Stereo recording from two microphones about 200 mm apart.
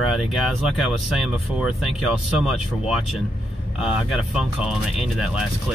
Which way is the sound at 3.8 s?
5° right (ahead or behind).